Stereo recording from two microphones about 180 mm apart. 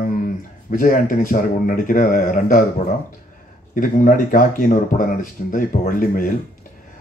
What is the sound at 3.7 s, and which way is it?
Speech, 50° left (ahead or behind).